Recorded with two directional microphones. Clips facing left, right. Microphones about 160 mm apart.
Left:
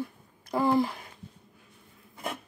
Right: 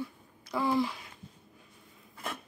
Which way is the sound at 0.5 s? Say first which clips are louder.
Left 4 dB; 50° left (ahead or behind).